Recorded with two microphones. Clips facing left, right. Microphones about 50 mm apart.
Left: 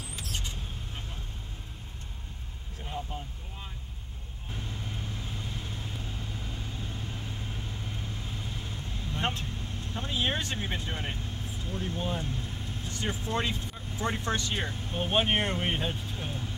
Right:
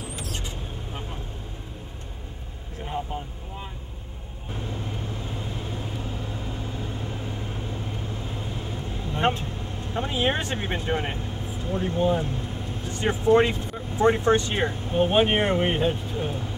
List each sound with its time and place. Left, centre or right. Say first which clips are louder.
5.4 s vehicle: right 6 dB; right
8.4 s vehicle: right 6 dB; right
9.9 s speech: right 6 dB; right
11.6 s vehicle: right 11 dB; right
12.9 s speech: right 13 dB; right
14.9 s speech: right 7 dB; centre